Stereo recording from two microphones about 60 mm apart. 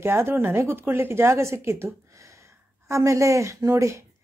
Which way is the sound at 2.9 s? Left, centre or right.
Right.